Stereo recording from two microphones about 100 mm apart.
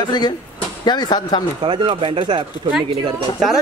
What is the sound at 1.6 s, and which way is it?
Speech, 60° right (ahead or behind).